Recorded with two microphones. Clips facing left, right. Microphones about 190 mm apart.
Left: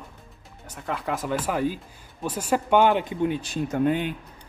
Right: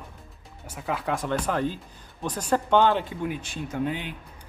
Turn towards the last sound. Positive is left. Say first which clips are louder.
# left 6 dB
turn(degrees=50)  # may be behind; listen again after turning